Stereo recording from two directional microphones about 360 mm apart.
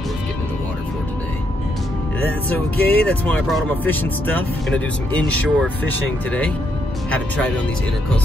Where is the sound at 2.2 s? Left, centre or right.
Centre.